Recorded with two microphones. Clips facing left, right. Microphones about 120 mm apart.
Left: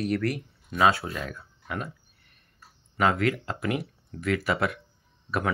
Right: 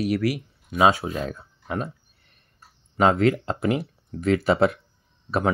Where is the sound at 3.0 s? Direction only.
30° right (ahead or behind).